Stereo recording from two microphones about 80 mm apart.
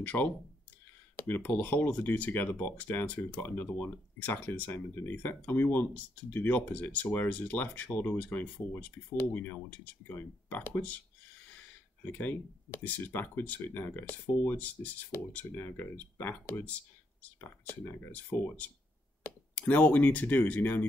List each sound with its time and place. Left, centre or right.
0.0 s speech: centre
12.0 s speech: left